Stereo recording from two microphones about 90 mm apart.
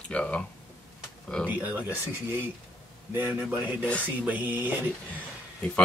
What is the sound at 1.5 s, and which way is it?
Speech, 15° right (ahead or behind).